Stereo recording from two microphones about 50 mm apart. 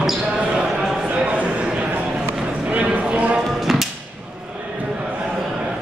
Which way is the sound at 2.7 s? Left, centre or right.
Right.